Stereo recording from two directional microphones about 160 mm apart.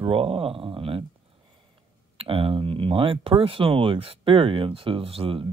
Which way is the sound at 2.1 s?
35° right (ahead or behind).